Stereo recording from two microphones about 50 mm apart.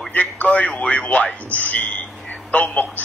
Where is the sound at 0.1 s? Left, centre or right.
Left.